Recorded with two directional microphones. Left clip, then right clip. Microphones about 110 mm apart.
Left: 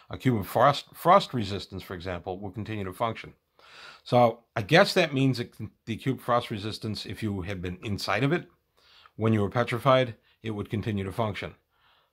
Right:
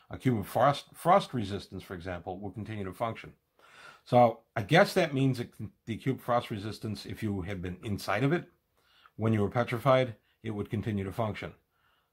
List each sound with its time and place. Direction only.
0.1 s speech: 55° left (ahead or behind)
3.6 s speech: 30° left (ahead or behind)